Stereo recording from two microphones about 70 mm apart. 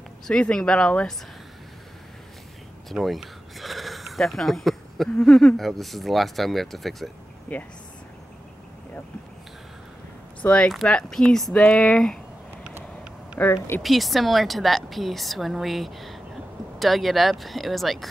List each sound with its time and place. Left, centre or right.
0.3 s speech: centre
2.9 s speech: centre
5.6 s a woman's voice: centre
7.5 s speech: left
10.4 s speech: centre
10.7 s a woman's voice: centre
13.4 s speech: left
13.8 s a woman's voice: centre